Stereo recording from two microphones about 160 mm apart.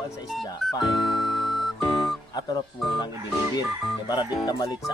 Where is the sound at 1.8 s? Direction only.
Centre (ahead or behind).